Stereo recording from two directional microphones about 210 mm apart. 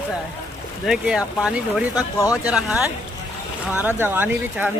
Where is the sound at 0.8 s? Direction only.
5° right (ahead or behind).